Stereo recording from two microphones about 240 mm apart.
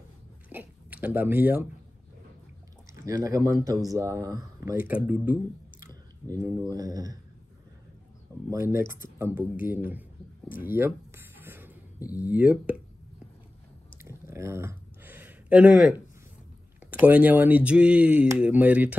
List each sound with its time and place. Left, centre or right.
0.5 s speech: centre
3.1 s speech: centre
8.5 s speech: centre
8.8 s speech: left
9.2 s speech: centre
10.6 s a sound: centre
12.3 s speech: centre
14.0 s a sound: centre
16.8 s speech: centre